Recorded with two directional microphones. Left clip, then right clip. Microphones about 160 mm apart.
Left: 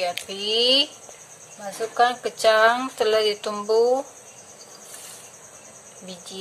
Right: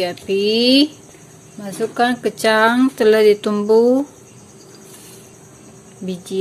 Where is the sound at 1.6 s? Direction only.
45° right (ahead or behind).